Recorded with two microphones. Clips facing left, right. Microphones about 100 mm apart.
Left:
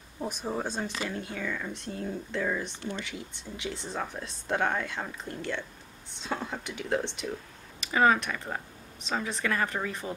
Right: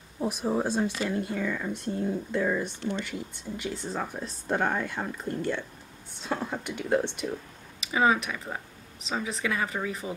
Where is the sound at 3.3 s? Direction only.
45° right (ahead or behind).